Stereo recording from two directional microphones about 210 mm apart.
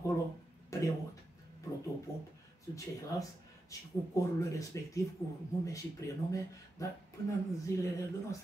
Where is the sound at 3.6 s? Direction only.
15° left (ahead or behind).